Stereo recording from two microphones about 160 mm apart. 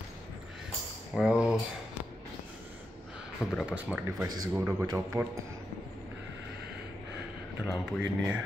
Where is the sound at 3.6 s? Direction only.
5° right (ahead or behind).